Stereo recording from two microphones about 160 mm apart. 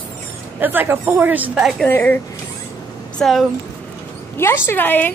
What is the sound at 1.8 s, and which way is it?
Speech, 10° left (ahead or behind).